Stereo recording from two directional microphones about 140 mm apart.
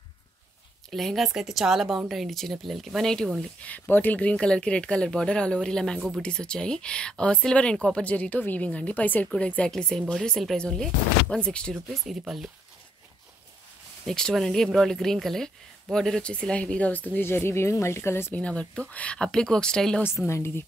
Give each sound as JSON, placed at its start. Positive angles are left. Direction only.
{"t": 0.8, "sound": "speech", "side_deg": 0}
{"t": 14.0, "sound": "speech", "side_deg": 5}
{"t": 20.2, "sound": "a woman's voice", "side_deg": 20}